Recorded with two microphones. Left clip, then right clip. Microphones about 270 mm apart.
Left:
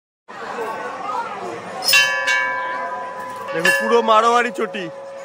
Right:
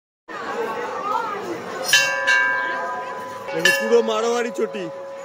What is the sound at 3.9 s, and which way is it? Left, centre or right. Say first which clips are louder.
Music: left 4 dB; centre.